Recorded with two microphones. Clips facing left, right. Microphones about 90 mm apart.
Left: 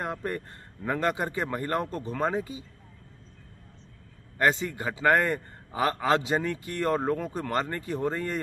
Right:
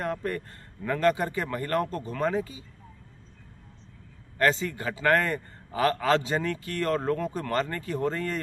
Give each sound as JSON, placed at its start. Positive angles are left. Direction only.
{"t": 0.0, "sound": "a man's voice", "side_deg": 15}
{"t": 4.4, "sound": "a man's voice", "side_deg": 15}